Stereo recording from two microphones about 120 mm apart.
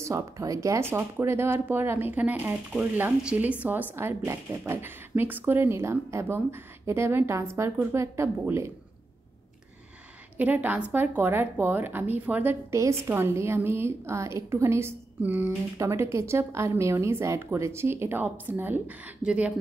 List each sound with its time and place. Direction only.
0.0 s speech: 25° right (ahead or behind)
10.3 s a woman's voice: 15° right (ahead or behind)